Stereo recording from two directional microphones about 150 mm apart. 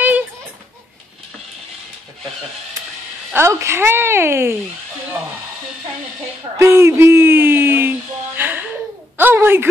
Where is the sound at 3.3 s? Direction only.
15° right (ahead or behind).